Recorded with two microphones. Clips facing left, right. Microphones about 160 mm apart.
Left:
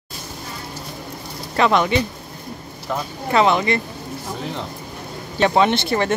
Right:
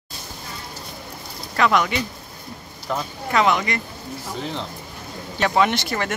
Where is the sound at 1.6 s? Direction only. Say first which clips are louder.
Left 2 dB; 25° left (ahead or behind).